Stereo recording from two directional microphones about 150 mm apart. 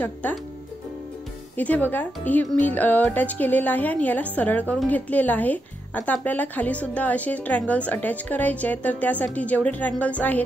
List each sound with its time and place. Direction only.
0.0 s speech: 10° left (ahead or behind)
1.6 s speech: 10° left (ahead or behind)